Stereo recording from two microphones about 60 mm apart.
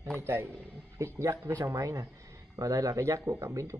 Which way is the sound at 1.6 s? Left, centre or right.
Right.